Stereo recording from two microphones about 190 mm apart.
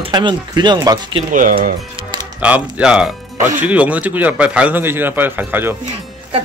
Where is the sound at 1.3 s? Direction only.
45° right (ahead or behind).